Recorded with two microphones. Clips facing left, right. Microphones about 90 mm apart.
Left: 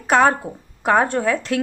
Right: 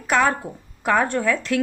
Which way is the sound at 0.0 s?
35° left (ahead or behind).